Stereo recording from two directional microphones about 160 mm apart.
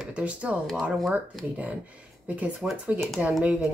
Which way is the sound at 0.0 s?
10° right (ahead or behind).